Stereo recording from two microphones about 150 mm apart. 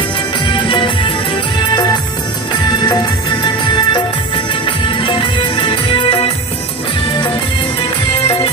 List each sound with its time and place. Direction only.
0.5 s music: 35° left (ahead or behind)